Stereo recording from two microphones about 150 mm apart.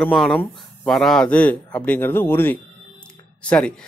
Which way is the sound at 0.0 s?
Centre (ahead or behind).